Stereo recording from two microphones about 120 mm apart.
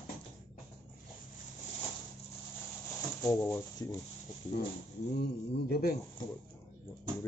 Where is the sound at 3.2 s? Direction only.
20° left (ahead or behind).